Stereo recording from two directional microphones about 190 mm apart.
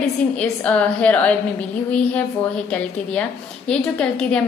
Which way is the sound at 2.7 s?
5° left (ahead or behind).